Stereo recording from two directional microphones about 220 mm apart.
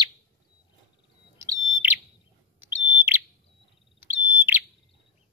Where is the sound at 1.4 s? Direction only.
10° right (ahead or behind).